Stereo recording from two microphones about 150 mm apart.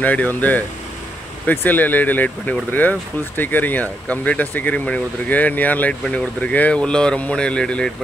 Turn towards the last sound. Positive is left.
turn(degrees=5)  # may be behind; listen again after turning